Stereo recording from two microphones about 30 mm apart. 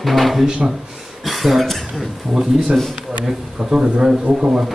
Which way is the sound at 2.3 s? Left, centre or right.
Centre.